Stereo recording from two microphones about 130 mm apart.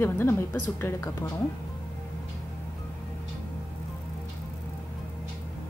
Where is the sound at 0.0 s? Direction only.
20° left (ahead or behind).